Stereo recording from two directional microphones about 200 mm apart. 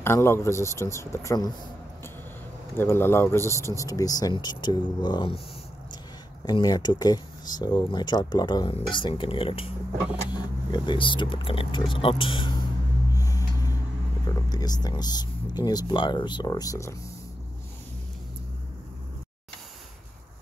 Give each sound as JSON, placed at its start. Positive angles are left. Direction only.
{"t": 0.0, "sound": "a man's voice", "side_deg": 10}
{"t": 2.8, "sound": "a man's voice", "side_deg": 10}
{"t": 6.4, "sound": "speech", "side_deg": 20}
{"t": 13.1, "sound": "a sound", "side_deg": 15}
{"t": 14.3, "sound": "speech", "side_deg": 20}